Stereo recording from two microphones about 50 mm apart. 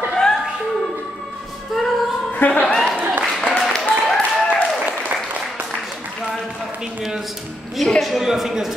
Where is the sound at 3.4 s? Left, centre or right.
Centre.